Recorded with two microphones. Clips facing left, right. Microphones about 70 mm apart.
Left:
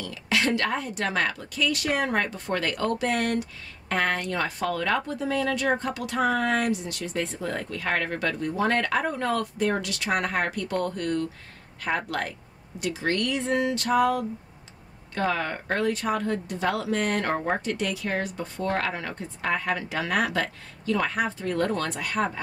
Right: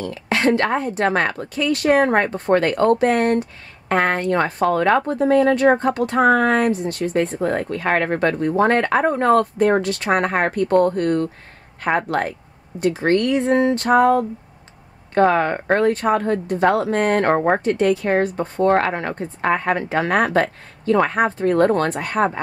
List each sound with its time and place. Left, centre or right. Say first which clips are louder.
0.0 s a woman's voice: right 7 dB; right